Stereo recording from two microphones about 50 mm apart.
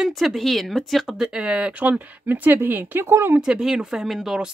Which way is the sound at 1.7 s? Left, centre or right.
Right.